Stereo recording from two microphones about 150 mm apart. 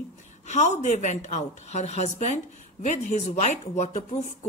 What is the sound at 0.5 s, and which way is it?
A woman's voice, 50° left (ahead or behind).